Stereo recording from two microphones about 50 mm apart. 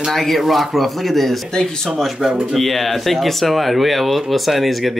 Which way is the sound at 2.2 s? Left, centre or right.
Centre.